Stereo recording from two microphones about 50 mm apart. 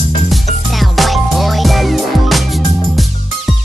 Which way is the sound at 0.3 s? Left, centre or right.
Centre.